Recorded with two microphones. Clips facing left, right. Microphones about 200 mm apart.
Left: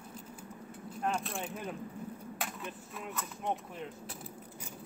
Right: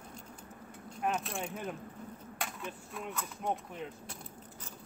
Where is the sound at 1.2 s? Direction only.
Centre (ahead or behind).